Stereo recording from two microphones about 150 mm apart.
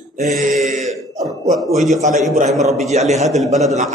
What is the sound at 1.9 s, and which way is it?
Speech, 50° right (ahead or behind).